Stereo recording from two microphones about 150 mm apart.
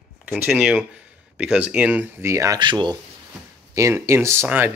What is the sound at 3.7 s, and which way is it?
Speech, 20° right (ahead or behind).